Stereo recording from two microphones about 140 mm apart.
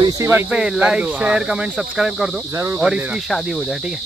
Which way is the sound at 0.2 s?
15° right (ahead or behind).